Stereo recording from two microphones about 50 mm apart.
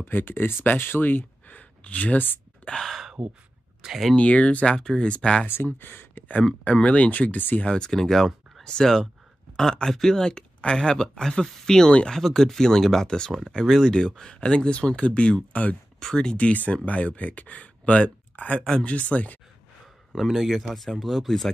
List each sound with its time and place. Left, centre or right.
0.0 s speech: left
4.1 s speech: left
4.7 s speech: centre
5.8 s speech: left
6.6 s speech: left
7.6 s speech: centre
16.0 s speech: centre
16.3 s speech: left
18.6 s speech: centre
18.9 s speech: left
20.1 s speech: centre